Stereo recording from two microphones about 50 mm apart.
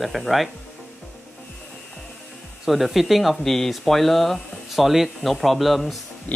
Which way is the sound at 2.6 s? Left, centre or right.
Centre.